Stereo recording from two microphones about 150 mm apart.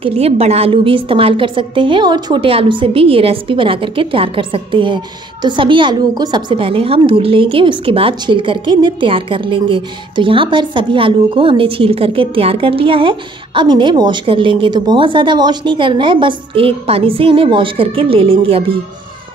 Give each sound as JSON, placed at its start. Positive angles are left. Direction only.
{"t": 0.0, "sound": "a woman's voice", "side_deg": -40}